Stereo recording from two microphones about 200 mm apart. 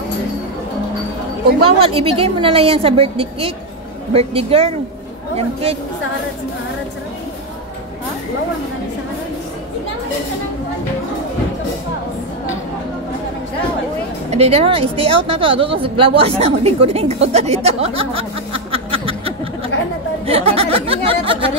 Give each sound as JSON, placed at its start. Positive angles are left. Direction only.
{"t": 1.6, "sound": "a woman's voice", "side_deg": -30}
{"t": 14.3, "sound": "a woman's voice", "side_deg": -30}
{"t": 17.6, "sound": "snicker", "side_deg": -30}
{"t": 20.2, "sound": "speech", "side_deg": -30}